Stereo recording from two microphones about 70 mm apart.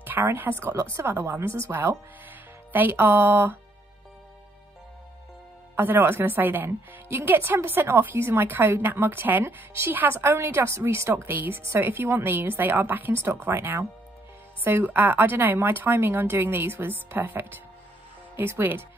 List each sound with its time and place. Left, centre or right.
0.0 s a woman's voice: right
5.8 s a woman's voice: right